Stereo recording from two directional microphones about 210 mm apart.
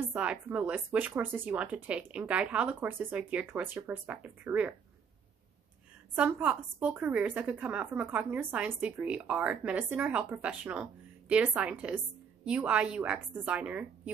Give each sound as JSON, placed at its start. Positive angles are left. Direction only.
{"t": 0.0, "sound": "a woman's voice", "side_deg": -5}
{"t": 6.1, "sound": "a woman's voice", "side_deg": -5}